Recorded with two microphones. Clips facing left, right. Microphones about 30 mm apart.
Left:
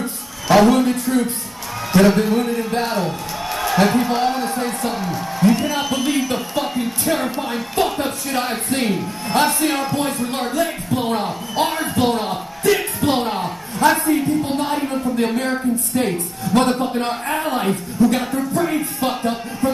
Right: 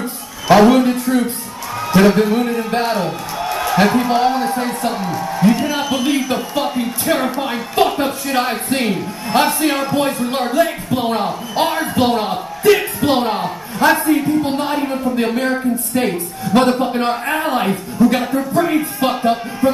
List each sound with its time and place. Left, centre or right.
0.0 s a man's voice: centre